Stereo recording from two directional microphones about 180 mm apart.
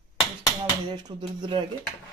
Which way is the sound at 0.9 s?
25° right (ahead or behind).